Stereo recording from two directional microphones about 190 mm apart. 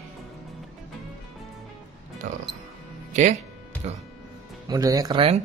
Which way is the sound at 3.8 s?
35° right (ahead or behind).